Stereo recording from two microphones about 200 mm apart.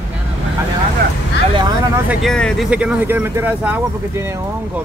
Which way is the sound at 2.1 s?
Centre (ahead or behind).